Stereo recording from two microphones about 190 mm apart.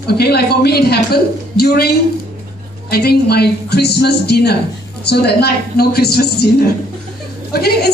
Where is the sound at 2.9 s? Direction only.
55° left (ahead or behind).